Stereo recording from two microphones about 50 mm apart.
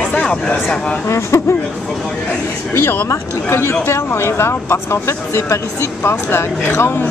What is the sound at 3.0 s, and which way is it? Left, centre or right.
Speech, left.